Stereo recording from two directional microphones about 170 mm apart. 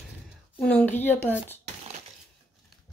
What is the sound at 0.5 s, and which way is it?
Speech, 5° left (ahead or behind).